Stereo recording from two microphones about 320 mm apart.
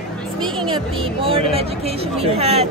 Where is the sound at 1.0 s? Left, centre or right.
Centre.